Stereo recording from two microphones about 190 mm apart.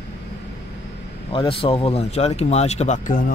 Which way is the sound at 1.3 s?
25° left (ahead or behind).